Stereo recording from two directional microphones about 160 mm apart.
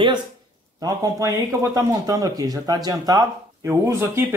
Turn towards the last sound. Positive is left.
turn(degrees=-15)  # may be behind; listen again after turning